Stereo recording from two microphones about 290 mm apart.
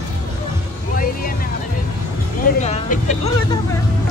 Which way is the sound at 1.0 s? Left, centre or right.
Left.